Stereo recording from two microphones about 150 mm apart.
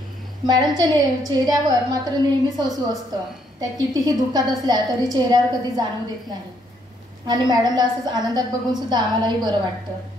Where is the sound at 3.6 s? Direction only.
25° right (ahead or behind).